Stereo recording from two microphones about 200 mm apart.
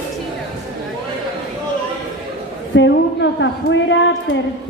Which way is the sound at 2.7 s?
65° left (ahead or behind).